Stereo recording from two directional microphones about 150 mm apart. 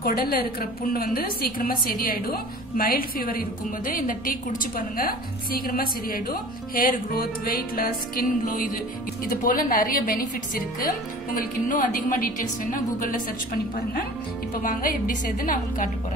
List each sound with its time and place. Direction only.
0.0 s a woman's voice: 80° left; by 13.2 s 65° left (ahead or behind)
14.6 s a woman's voice: 70° left (ahead or behind)